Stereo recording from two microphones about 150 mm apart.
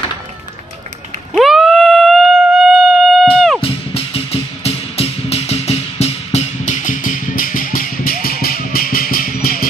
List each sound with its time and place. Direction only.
1.3 s music: centre (ahead or behind)
3.6 s music: 40° left (ahead or behind); by 9.7 s 80° left